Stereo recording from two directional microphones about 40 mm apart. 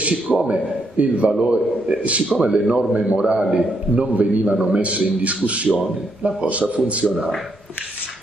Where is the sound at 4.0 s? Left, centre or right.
Right.